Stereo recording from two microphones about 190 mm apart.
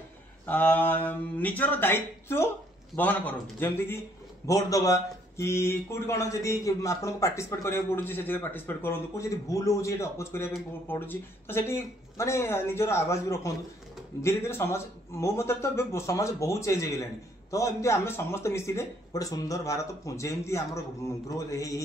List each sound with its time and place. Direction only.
0.5 s speech: 10° left (ahead or behind)